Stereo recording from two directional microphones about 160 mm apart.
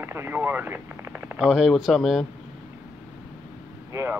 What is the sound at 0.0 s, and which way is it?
Speech, 15° right (ahead or behind).